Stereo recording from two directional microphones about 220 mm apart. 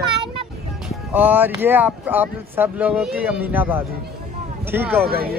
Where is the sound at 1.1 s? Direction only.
10° right (ahead or behind).